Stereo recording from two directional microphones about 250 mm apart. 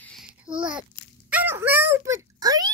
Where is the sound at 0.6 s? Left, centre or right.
Centre.